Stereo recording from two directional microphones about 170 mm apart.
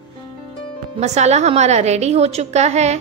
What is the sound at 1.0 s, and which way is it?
A woman's voice, 40° right (ahead or behind).